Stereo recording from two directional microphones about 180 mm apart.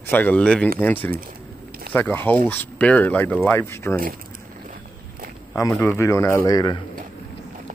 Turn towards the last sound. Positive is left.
turn(degrees=20)  # may be behind; listen again after turning